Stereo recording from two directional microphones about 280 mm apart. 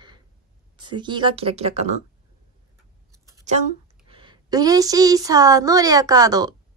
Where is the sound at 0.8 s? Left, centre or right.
Centre.